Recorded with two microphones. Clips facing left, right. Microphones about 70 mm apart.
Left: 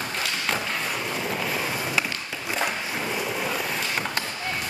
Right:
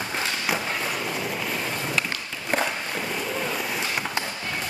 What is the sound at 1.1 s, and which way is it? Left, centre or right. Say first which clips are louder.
Skateboard: left 1 dB; centre.